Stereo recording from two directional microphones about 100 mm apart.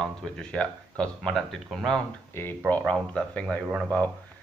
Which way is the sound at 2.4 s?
25° left (ahead or behind).